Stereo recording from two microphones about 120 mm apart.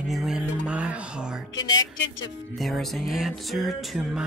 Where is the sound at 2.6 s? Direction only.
Centre (ahead or behind).